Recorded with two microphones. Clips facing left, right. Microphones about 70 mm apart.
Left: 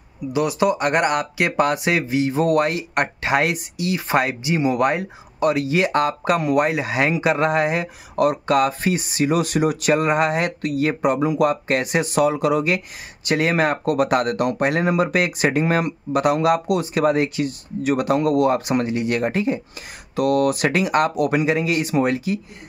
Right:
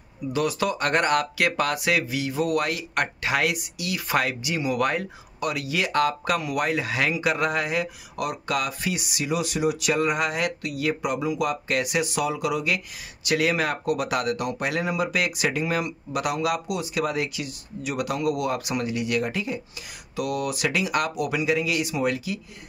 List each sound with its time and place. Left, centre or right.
0.3 s speech: centre; by 22.4 s left